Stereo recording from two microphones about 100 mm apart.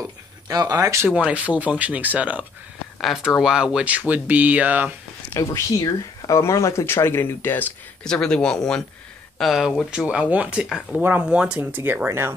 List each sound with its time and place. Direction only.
0.5 s speech: 40° right (ahead or behind)
1.0 s speech: 10° right (ahead or behind)
3.0 s speech: 5° right (ahead or behind)
5.3 s speech: 35° left (ahead or behind)
8.0 s speech: 5° left (ahead or behind)
9.8 s speech: 10° right (ahead or behind)
11.0 s speech: 15° right (ahead or behind)